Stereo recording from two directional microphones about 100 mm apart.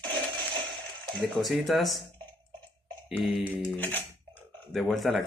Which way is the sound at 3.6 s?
15° left (ahead or behind).